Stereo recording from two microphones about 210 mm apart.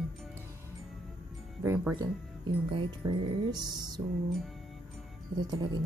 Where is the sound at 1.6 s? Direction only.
15° right (ahead or behind).